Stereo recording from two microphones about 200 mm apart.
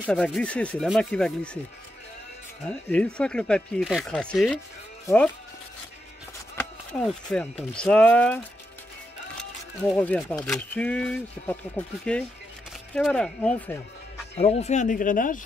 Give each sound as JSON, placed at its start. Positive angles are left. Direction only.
{"t": 0.1, "sound": "speech", "side_deg": 5}
{"t": 2.7, "sound": "speech", "side_deg": 5}
{"t": 6.5, "sound": "speech", "side_deg": 5}
{"t": 9.8, "sound": "speech", "side_deg": 5}
{"t": 14.3, "sound": "speech", "side_deg": 30}